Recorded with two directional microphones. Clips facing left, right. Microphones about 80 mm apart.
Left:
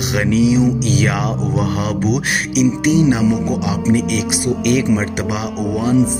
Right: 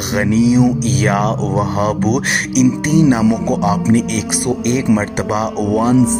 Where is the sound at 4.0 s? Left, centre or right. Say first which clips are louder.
Even; right.